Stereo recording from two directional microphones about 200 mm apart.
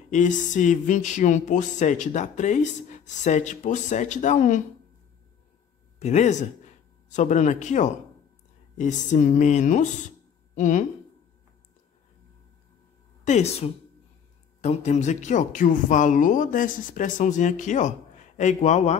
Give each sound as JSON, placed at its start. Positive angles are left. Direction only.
{"t": 0.1, "sound": "speech", "side_deg": 40}
{"t": 5.9, "sound": "speech", "side_deg": 35}
{"t": 13.2, "sound": "speech", "side_deg": 35}